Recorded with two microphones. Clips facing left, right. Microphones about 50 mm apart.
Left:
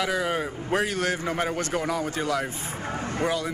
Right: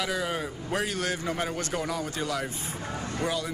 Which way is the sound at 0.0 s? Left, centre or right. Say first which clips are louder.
Left 4 dB; left.